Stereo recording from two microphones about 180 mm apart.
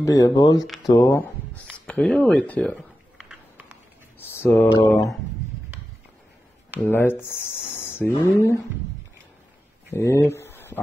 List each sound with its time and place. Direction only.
0.0 s speech: 20° left (ahead or behind)
1.9 s speech: 5° left (ahead or behind)
3.2 s a sound: 5° right (ahead or behind)
4.2 s speech: 10° left (ahead or behind)
6.8 s speech: 10° left (ahead or behind)
9.9 s speech: 15° left (ahead or behind)